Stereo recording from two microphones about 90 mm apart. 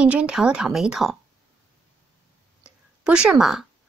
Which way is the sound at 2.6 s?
10° right (ahead or behind).